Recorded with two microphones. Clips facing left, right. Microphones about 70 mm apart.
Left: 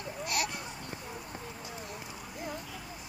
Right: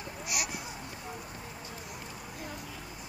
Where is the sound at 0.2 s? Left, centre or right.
Centre.